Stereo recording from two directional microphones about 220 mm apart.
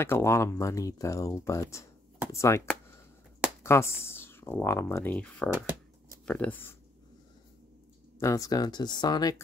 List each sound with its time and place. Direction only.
0.0 s speech: 10° left (ahead or behind)
8.2 s speech: 15° left (ahead or behind)